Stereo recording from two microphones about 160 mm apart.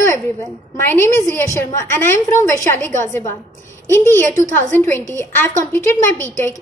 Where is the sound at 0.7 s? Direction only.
15° left (ahead or behind).